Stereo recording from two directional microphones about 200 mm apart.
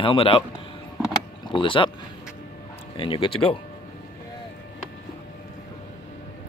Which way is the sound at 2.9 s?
25° left (ahead or behind).